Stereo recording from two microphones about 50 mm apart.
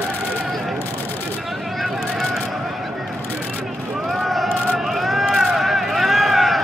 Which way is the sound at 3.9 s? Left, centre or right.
Centre.